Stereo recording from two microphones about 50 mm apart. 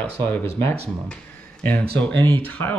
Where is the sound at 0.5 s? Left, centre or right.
Left.